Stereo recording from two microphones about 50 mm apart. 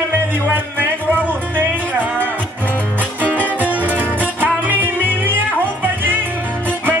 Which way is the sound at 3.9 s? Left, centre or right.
Right.